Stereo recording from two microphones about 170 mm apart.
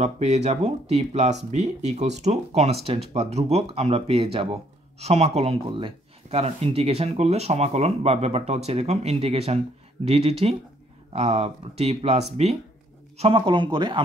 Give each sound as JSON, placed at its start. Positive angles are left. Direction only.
{"t": 0.0, "sound": "speech", "side_deg": -40}